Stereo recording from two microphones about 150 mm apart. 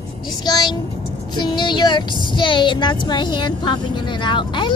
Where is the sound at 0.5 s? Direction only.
30° left (ahead or behind).